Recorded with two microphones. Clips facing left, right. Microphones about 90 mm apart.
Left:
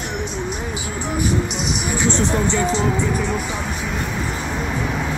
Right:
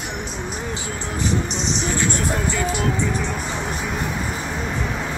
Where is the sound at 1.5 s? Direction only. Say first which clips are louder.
Left 1 dB; 10° left (ahead or behind); by 2.9 s 25° left (ahead or behind).